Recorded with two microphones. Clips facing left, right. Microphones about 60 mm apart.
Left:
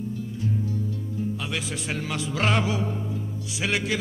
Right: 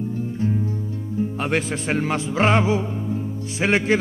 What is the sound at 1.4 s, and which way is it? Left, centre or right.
A man's voice, right.